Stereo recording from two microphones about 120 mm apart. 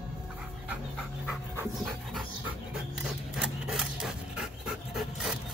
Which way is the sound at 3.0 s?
5° right (ahead or behind).